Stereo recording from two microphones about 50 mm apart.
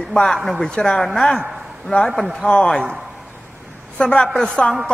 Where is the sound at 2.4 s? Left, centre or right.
Left.